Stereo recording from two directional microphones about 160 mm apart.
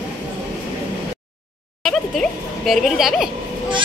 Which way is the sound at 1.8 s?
Centre (ahead or behind).